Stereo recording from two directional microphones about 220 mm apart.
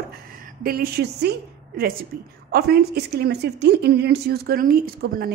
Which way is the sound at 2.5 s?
45° right (ahead or behind).